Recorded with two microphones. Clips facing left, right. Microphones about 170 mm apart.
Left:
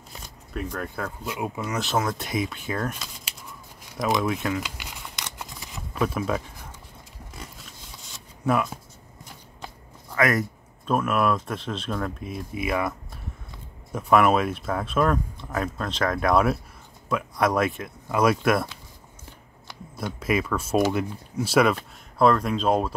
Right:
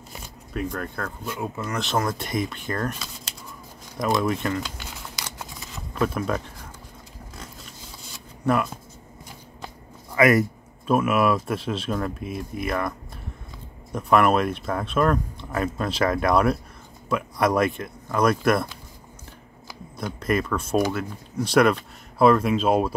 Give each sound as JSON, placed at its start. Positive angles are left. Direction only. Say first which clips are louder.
{"t": 0.5, "sound": "speech", "louder": "right 2 dB", "side_deg": 0}
{"t": 3.9, "sound": "tearing", "louder": "right 1 dB", "side_deg": 0}
{"t": 5.9, "sound": "speech", "louder": "right 1 dB", "side_deg": 0}
{"t": 10.1, "sound": "speech", "louder": "right 5 dB", "side_deg": -10}
{"t": 13.9, "sound": "speech", "louder": "even", "side_deg": 0}
{"t": 19.7, "sound": "speech", "louder": "even", "side_deg": 5}